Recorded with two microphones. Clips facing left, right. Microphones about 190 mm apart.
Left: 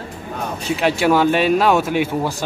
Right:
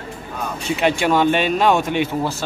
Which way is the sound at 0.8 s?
5° left (ahead or behind).